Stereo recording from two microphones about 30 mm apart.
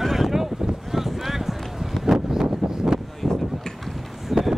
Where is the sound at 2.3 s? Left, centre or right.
Centre.